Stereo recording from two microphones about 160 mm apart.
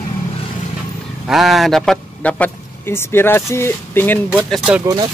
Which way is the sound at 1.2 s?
Centre (ahead or behind).